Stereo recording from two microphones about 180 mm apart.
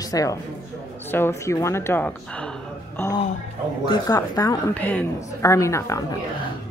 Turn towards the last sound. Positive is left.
turn(degrees=20)  # may be behind; listen again after turning